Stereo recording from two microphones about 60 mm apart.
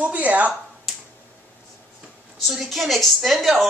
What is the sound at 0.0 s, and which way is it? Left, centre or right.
Speech, right.